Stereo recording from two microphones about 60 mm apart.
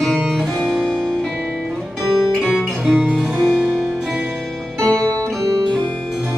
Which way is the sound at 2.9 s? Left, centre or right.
Centre.